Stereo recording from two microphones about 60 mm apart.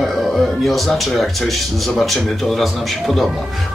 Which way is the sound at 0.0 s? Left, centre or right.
Centre.